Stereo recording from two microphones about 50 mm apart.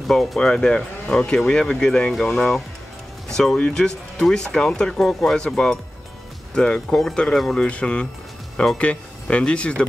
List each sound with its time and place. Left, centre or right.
0.1 s speech: centre
0.4 s speech: centre
7.5 s speech: left